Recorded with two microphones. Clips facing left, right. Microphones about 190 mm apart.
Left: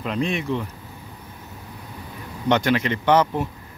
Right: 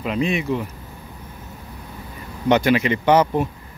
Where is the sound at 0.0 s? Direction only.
5° right (ahead or behind).